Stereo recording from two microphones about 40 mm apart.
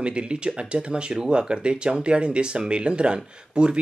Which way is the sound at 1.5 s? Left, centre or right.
Right.